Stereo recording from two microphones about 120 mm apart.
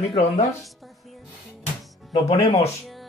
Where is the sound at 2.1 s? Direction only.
55° left (ahead or behind).